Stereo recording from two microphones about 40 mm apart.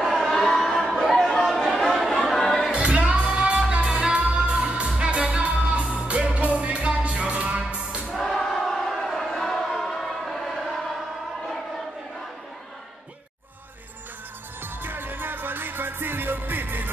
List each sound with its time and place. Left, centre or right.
0.1 s a sound: centre
1.1 s chatter: centre
2.7 s music: right
8.1 s music: centre
9.3 s a sound: centre
14.6 s music: right